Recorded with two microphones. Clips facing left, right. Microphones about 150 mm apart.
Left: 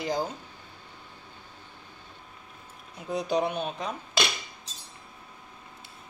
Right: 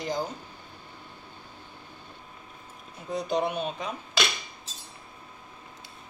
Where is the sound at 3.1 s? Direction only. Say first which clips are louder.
Left 1 dB; 5° left (ahead or behind).